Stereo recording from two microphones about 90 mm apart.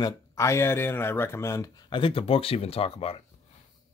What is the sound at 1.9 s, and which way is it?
Speech, 80° left.